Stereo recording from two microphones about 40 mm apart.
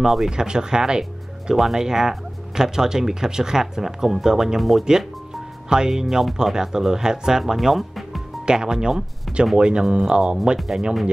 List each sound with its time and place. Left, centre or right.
0.0 s speech: centre
0.3 s speech: centre
4.6 s speech: centre
5.7 s speech: centre
7.5 s speech: centre
8.5 s speech: centre